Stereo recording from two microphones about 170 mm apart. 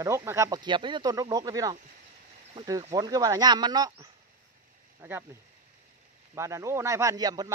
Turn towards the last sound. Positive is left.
turn(degrees=-20)  # may be behind; listen again after turning